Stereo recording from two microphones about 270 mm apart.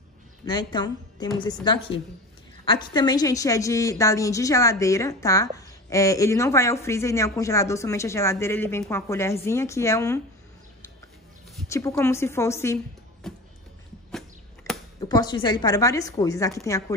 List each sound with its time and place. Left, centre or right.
0.5 s a woman's voice: centre
11.7 s a woman's voice: centre
13.2 s music: centre
14.6 s speech: centre